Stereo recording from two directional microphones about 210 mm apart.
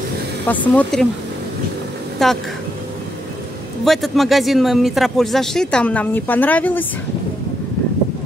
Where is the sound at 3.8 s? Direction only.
Centre (ahead or behind).